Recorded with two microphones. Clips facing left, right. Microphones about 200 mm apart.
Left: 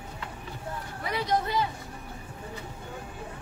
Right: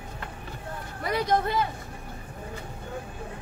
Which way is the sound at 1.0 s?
50° right (ahead or behind).